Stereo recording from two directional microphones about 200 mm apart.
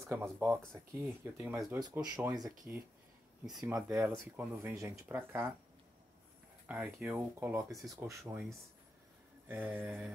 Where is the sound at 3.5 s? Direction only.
Centre (ahead or behind).